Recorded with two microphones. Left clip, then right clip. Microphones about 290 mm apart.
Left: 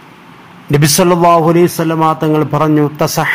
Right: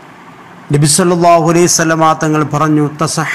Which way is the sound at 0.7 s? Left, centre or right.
Left.